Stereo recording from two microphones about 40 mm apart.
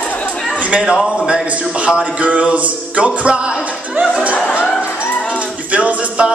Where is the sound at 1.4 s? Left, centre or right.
Right.